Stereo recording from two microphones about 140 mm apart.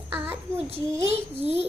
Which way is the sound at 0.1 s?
15° right (ahead or behind).